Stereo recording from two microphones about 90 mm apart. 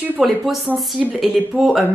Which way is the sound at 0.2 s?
5° right (ahead or behind).